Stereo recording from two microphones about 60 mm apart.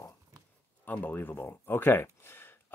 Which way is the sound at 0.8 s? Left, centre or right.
Left.